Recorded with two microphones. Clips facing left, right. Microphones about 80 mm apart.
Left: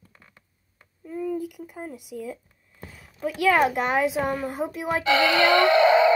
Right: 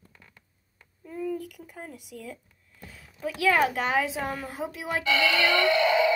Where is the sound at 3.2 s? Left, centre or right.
Centre.